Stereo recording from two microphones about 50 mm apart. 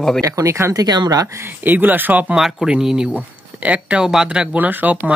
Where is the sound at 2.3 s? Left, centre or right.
Centre.